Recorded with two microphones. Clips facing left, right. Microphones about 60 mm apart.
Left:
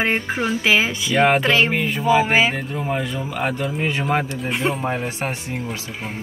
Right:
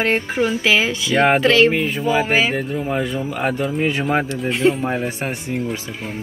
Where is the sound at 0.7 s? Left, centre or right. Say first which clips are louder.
Right 1 dB; centre.